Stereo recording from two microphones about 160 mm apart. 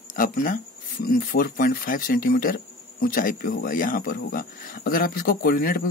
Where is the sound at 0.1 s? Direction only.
55° left (ahead or behind).